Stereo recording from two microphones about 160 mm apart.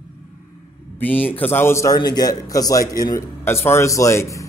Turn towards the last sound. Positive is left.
turn(degrees=20)  # may be behind; listen again after turning